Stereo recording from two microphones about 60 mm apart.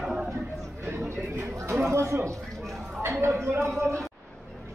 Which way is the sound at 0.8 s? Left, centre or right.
Right.